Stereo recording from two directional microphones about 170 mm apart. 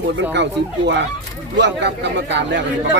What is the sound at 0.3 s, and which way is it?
Speech, 90° right.